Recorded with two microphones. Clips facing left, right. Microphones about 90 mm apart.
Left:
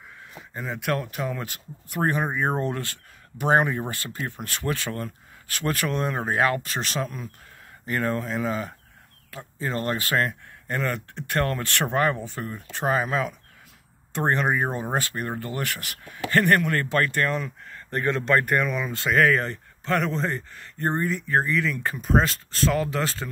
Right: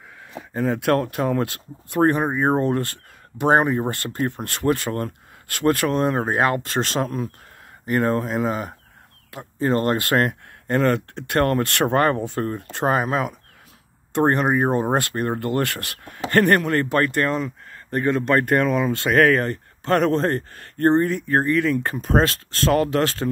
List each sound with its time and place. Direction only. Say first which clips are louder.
0.5 s speech: right 8 dB; 65° right (ahead or behind); by 2.2 s 50° right (ahead or behind)
2.3 s speech: right 6 dB; 30° right (ahead or behind)
3.9 s speech: right 8 dB; 55° right (ahead or behind); by 6.6 s 35° right (ahead or behind)
6.6 s speech: right 6 dB; 50° right (ahead or behind)
8.5 s speech: right 3 dB; 30° right (ahead or behind)
9.6 s speech: right 7 dB; 45° right (ahead or behind)
15.1 s speech: right 7 dB; 50° right (ahead or behind); by 17.5 s 30° right (ahead or behind)
17.9 s speech: right 4 dB; 20° right (ahead or behind)
18.9 s speech: right 2 dB; 55° right (ahead or behind)
21.3 s speech: right 3 dB; 45° right (ahead or behind)
22.7 s speech: right 7 dB; 60° right (ahead or behind)